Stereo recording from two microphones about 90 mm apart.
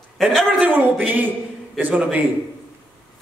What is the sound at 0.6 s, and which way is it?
A man's voice, 20° right (ahead or behind).